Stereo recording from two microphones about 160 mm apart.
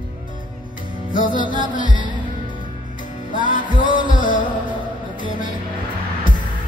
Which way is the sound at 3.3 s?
55° left (ahead or behind).